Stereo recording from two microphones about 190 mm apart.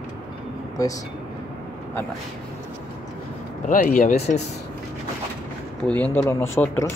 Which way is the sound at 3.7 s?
45° left (ahead or behind).